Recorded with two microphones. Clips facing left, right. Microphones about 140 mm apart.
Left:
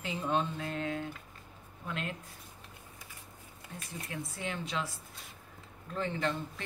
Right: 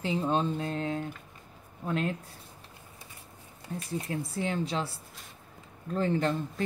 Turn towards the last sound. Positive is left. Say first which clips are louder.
# right 6 dB
turn(degrees=-40)  # may be behind; listen again after turning